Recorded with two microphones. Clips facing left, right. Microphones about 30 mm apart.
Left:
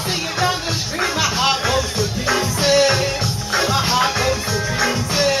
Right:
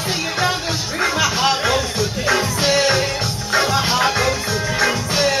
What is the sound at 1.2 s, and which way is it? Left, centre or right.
Music, centre.